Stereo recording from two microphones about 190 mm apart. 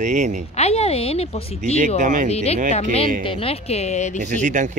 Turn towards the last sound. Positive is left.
turn(degrees=-40)  # may be behind; listen again after turning